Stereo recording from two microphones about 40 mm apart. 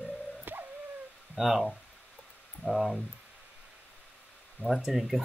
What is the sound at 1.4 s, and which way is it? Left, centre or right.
Speech, centre.